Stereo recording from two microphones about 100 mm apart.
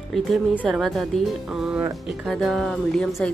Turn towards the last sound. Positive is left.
turn(degrees=5)  # may be behind; listen again after turning